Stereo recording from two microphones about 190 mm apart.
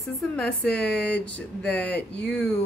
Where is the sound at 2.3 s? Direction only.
5° left (ahead or behind).